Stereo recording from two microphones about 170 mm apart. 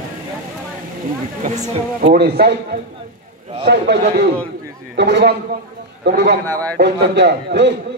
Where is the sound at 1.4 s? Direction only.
45° right (ahead or behind).